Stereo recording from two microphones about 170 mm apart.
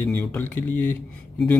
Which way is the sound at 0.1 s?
10° left (ahead or behind).